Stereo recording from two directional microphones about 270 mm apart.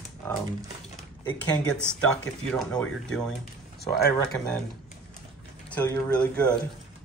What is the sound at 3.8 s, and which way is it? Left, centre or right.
Speech, left.